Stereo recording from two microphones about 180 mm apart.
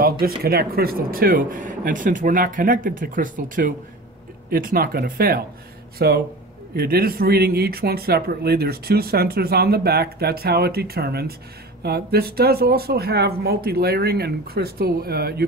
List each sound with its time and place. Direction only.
0.0 s speech: 55° right (ahead or behind)